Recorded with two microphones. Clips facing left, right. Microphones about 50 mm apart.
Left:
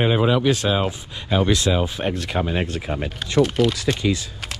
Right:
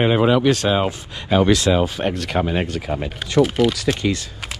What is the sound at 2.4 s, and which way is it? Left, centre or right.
Speech, right.